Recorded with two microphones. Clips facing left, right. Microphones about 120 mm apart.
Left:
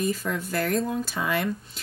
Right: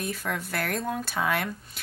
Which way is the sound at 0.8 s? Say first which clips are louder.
Even; 60° right (ahead or behind).